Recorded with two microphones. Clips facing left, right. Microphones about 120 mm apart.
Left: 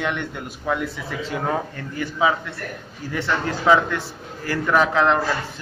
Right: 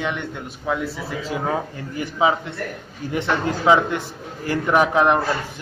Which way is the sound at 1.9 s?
20° right (ahead or behind).